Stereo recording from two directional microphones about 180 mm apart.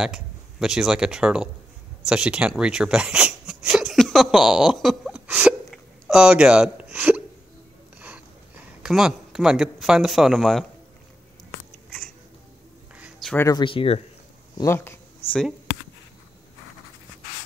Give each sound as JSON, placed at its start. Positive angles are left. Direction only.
{"t": 0.0, "sound": "speech", "side_deg": -5}
{"t": 2.0, "sound": "a sound", "side_deg": -5}
{"t": 8.8, "sound": "speech", "side_deg": -5}
{"t": 12.9, "sound": "a sound", "side_deg": -5}
{"t": 13.3, "sound": "speech", "side_deg": 15}
{"t": 14.6, "sound": "speech", "side_deg": 15}